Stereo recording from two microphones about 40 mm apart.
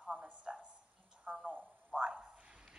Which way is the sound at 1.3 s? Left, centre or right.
Right.